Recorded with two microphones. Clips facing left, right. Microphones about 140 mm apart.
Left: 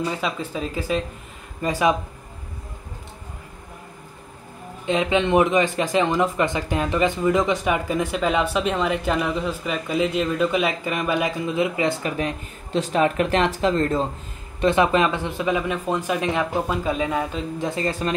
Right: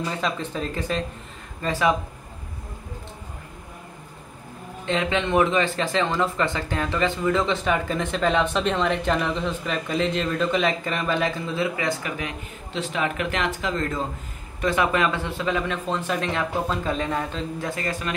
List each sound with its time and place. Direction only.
0.2 s speech: 5° left (ahead or behind)
4.8 s speech: 15° left (ahead or behind)
12.7 s speech: 40° left (ahead or behind)
14.6 s speech: 25° left (ahead or behind)